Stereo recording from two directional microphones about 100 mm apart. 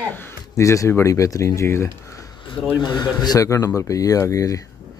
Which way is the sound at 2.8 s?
40° left (ahead or behind).